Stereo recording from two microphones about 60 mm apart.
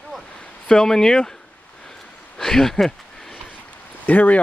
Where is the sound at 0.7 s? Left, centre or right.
Centre.